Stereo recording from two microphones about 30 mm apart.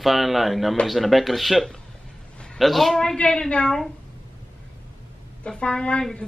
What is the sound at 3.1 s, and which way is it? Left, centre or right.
Speech, left.